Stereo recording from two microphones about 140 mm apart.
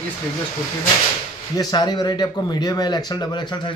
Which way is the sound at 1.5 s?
30° left (ahead or behind).